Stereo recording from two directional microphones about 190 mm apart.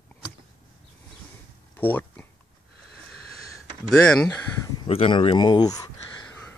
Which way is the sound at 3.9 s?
5° left (ahead or behind).